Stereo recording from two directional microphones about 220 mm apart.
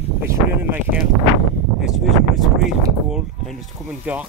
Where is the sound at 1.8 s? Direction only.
Centre (ahead or behind).